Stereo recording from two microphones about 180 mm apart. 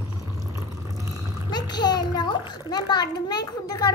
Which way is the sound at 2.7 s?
20° left (ahead or behind).